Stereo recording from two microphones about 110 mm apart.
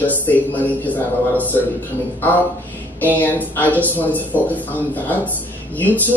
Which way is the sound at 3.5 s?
15° left (ahead or behind).